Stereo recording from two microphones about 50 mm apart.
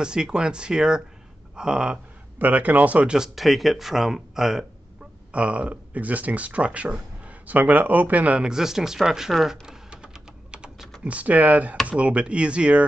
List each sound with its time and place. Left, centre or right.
0.0 s speech: centre
2.3 s speech: right
3.3 s speech: centre
5.3 s speech: right
8.4 s typing: centre
11.1 s speech: right